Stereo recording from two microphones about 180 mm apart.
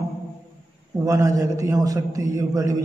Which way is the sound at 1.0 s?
20° right (ahead or behind).